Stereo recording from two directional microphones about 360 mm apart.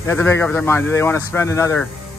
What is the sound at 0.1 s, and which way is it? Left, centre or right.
Speech, centre.